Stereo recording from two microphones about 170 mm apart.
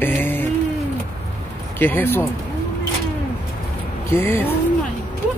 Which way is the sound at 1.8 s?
10° left (ahead or behind).